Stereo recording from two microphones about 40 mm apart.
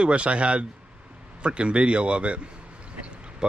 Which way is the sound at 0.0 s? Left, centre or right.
Right.